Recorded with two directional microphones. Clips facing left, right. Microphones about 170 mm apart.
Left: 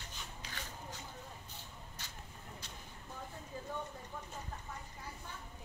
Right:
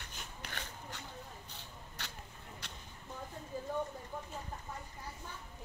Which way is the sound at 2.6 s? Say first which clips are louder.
Right 1 dB; 65° right (ahead or behind).